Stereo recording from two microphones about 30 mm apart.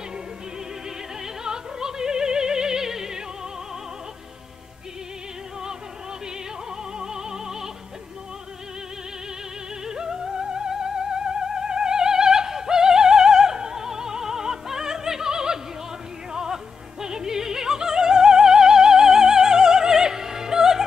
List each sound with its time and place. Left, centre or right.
1.2 s music: right
7.0 s music: right
9.8 s music: centre
17.0 s opera: centre